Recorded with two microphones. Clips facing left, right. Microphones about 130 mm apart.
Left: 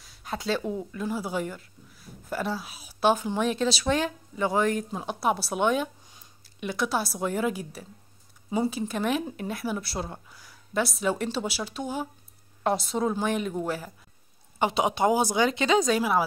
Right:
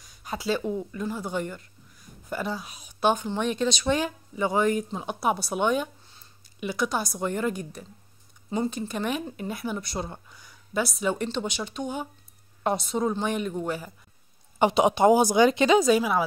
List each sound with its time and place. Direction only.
0.0 s a woman's voice: centre (ahead or behind)
14.6 s speech: 20° right (ahead or behind)
15.8 s speech: centre (ahead or behind)